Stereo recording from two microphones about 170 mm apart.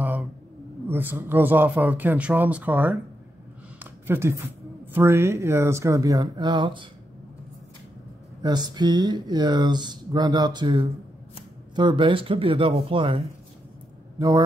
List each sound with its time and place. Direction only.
0.0 s roaring cats: 10° right (ahead or behind)
0.8 s a man's voice: 10° right (ahead or behind); by 6.9 s 30° right (ahead or behind)
8.4 s speech: 25° right (ahead or behind)
14.1 s speech: 20° right (ahead or behind)